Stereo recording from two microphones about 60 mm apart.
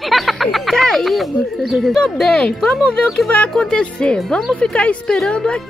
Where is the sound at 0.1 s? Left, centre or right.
Centre.